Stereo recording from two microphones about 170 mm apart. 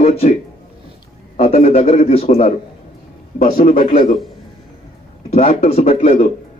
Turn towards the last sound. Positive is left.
turn(degrees=40)  # may be behind; listen again after turning